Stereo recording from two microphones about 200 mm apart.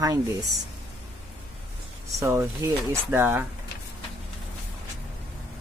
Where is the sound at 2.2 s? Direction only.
15° right (ahead or behind).